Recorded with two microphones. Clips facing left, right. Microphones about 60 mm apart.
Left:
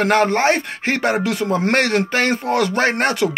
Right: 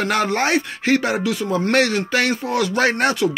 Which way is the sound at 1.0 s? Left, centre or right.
Left.